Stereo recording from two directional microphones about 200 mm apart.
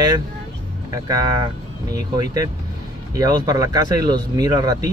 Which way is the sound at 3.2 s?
20° right (ahead or behind).